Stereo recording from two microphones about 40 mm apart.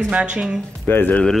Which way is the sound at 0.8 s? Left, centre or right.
Left.